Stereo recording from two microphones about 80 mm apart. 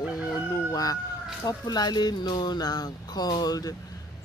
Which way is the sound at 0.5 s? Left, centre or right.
Left.